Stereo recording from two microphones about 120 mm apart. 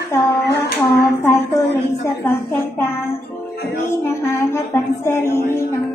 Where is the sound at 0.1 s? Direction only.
20° left (ahead or behind).